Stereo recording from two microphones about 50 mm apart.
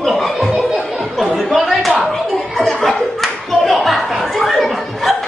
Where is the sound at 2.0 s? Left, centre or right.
Centre.